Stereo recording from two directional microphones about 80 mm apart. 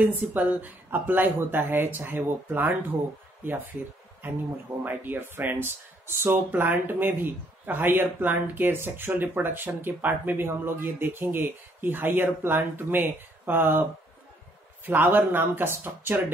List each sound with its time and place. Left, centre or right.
0.0 s speech: right
4.2 s speech: right
14.9 s speech: right